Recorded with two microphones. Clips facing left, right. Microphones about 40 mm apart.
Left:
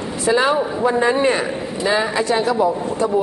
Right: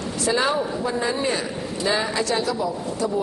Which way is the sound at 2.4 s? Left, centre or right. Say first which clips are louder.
Left 7 dB; left.